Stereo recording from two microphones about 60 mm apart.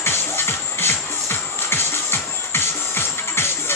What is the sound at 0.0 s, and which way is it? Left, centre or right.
Music, left.